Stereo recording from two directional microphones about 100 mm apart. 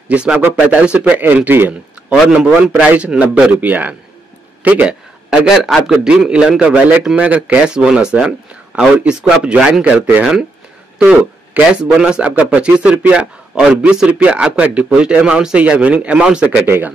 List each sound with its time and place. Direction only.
0.1 s speech: 10° right (ahead or behind)
5.4 s speech: 5° right (ahead or behind)
11.5 s speech: 10° right (ahead or behind)
16.6 s speech: 20° right (ahead or behind)